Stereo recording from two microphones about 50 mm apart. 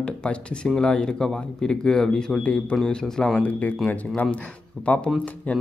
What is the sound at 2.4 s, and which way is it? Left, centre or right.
Speech, left.